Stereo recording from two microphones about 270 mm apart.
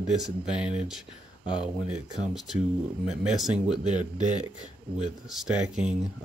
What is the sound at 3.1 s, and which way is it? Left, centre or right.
Speech, centre.